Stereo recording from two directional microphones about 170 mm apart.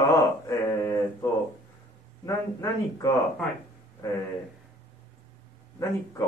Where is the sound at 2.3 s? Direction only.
20° left (ahead or behind).